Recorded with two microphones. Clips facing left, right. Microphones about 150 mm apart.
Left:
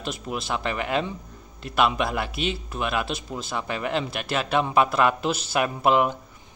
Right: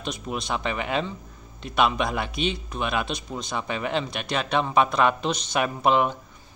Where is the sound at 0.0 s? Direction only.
5° left (ahead or behind).